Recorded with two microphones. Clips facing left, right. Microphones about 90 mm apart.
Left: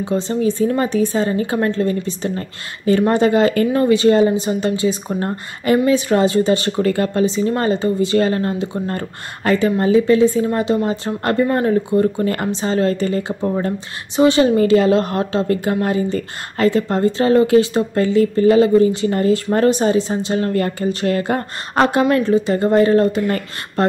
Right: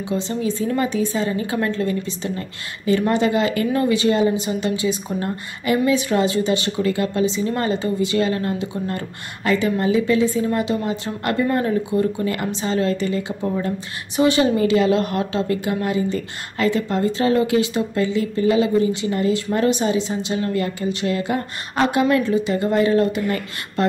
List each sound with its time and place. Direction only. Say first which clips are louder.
0.0 s a woman's voice: left 5 dB; 40° left (ahead or behind)
22.1 s a woman's voice: left 3 dB; 35° left (ahead or behind)